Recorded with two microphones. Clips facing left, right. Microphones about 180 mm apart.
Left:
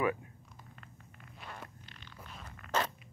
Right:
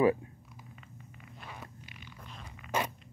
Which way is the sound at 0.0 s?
30° right (ahead or behind).